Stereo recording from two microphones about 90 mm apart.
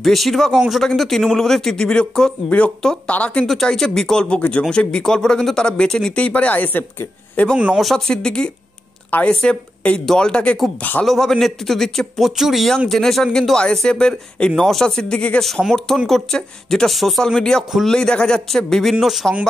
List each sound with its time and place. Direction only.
0.0 s speech: centre (ahead or behind)
3.4 s speech: 5° left (ahead or behind); by 7.4 s 20° left (ahead or behind)
7.7 s a man's voice: 5° left (ahead or behind); by 11.1 s 20° left (ahead or behind)
11.1 s speech: 5° left (ahead or behind)